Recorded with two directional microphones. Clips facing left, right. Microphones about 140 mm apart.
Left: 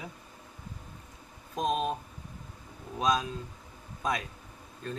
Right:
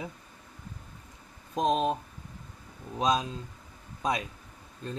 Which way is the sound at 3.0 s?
20° right (ahead or behind).